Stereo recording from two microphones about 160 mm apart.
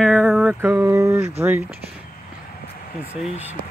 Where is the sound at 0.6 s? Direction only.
15° right (ahead or behind).